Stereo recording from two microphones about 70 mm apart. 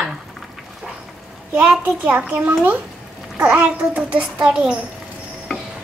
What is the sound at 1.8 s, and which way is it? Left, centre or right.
A child's voice, right.